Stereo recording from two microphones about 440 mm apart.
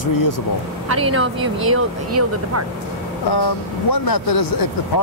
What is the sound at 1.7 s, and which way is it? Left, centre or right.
Speech, right.